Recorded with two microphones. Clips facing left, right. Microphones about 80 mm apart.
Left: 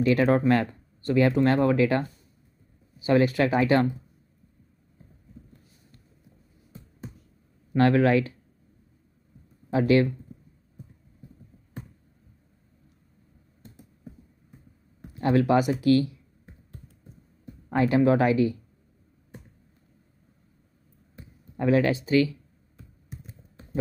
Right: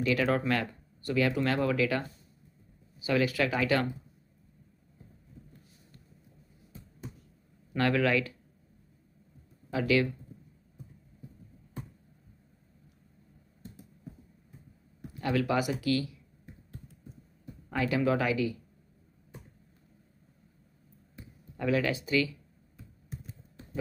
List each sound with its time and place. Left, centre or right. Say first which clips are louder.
0.0 s speech: left 7 dB; left
3.1 s speech: left 6 dB; left
7.7 s speech: left 7 dB; left
9.7 s speech: left 6 dB; left
15.0 s speech: left 7 dB; left
17.6 s speech: left 7 dB; left
21.5 s speech: left 6 dB; left